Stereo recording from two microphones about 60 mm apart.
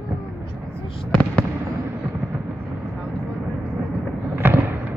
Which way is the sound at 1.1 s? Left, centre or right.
Left.